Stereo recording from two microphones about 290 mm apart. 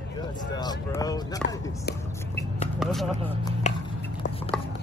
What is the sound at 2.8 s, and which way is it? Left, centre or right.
Vehicle, centre.